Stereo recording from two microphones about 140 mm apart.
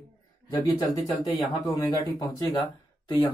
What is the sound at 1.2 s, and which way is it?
Speech, 25° left (ahead or behind).